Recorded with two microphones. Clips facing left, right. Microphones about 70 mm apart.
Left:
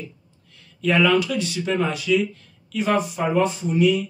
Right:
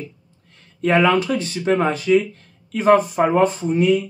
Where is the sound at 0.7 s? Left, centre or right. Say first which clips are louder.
Right 2 dB; right.